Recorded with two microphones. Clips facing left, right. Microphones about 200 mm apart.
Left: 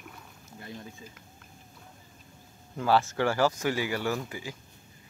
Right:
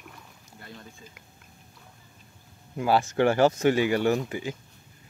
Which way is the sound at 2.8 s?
15° right (ahead or behind).